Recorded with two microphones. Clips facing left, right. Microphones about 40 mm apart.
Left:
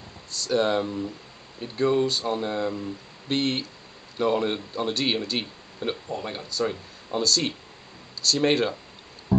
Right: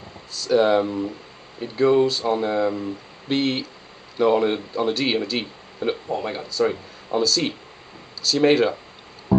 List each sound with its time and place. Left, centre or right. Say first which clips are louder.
0.3 s speech: right 6 dB; centre
0.8 s speech: right 5 dB; centre
1.6 s speech: right 5 dB; centre
6.0 s speech: right 6 dB; centre
6.3 s speech: right 5 dB; centre
9.3 s music: right 4 dB; centre